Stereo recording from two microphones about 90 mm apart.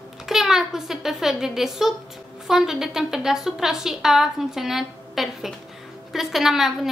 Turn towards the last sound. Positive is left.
turn(degrees=-5)  # may be behind; listen again after turning